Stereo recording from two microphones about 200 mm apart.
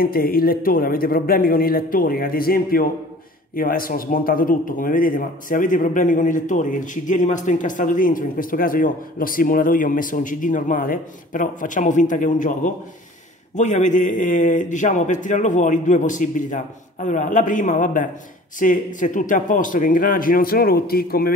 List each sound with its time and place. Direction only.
0.0 s a man's voice: 45° left (ahead or behind)